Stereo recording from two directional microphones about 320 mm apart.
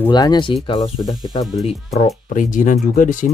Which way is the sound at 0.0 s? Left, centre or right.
Centre.